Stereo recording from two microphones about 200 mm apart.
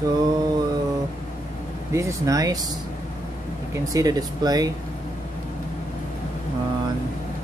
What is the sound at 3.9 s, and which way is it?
Speech, 20° right (ahead or behind).